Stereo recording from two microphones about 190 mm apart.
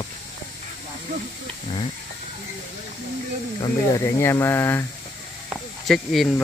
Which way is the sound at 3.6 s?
15° left (ahead or behind).